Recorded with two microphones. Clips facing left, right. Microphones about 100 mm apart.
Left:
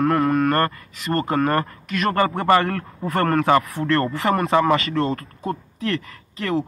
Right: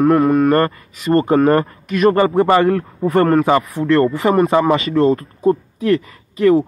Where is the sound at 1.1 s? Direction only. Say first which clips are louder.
Right 7 dB; 20° right (ahead or behind).